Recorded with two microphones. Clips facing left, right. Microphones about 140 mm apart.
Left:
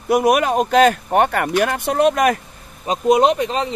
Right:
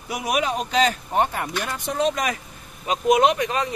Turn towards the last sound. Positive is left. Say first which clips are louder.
# left 3 dB
turn(degrees=30)  # may be behind; listen again after turning